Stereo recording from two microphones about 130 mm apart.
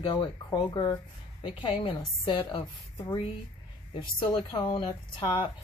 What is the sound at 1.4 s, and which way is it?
Speech, 40° left (ahead or behind).